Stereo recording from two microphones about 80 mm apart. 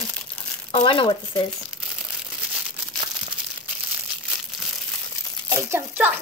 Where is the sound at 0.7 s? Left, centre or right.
Left.